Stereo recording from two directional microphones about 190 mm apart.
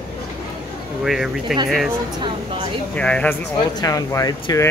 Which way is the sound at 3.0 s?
5° left (ahead or behind).